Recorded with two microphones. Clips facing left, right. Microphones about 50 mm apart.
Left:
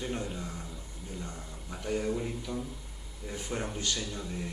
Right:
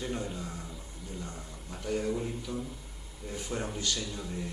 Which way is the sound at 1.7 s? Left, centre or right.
Centre.